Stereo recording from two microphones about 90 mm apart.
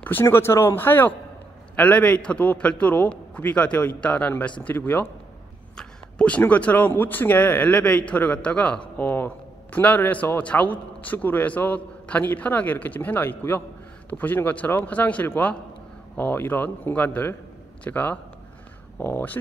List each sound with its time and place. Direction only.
0.0 s a man's voice: 25° left (ahead or behind)